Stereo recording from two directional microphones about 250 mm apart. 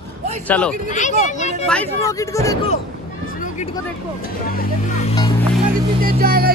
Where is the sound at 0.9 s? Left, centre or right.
Left.